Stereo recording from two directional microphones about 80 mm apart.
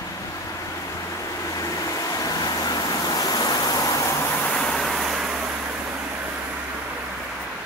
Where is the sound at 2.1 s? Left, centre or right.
Left.